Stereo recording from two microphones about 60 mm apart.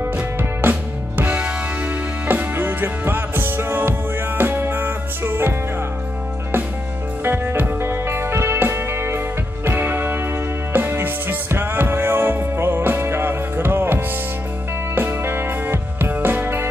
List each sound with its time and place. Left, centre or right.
0.0 s music: right
7.2 s music: right